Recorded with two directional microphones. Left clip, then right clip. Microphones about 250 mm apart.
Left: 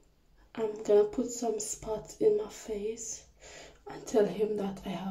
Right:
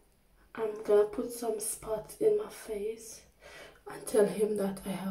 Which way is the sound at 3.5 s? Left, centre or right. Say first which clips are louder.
Even; centre.